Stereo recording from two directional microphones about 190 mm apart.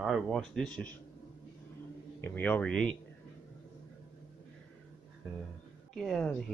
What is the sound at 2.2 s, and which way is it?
Speech, 10° left (ahead or behind).